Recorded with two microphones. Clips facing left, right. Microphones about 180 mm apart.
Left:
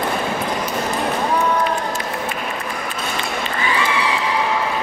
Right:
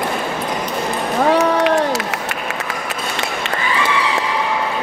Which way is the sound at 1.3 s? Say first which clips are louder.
Right 7 dB; 85° right.